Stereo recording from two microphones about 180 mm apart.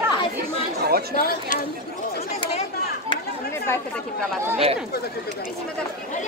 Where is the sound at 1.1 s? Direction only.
55° left (ahead or behind).